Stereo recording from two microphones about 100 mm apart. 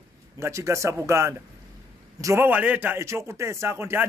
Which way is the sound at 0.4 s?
30° right (ahead or behind).